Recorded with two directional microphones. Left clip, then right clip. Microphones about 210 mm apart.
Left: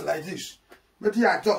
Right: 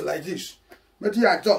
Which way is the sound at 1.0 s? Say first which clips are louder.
Right 2 dB; 15° left (ahead or behind).